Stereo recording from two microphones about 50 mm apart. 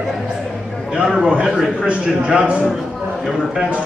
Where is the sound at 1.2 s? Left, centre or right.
Centre.